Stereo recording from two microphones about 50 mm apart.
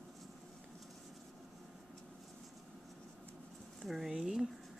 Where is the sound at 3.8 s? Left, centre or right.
Centre.